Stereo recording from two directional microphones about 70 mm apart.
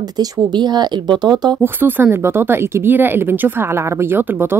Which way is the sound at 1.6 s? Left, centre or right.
Right.